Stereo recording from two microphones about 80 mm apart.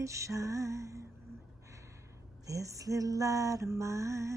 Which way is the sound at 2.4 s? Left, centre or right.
Right.